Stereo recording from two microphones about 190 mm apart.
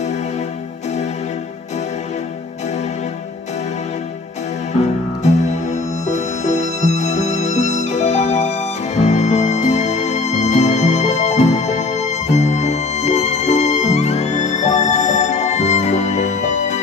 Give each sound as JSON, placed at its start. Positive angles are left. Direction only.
{"t": 5.2, "sound": "music", "side_deg": 40}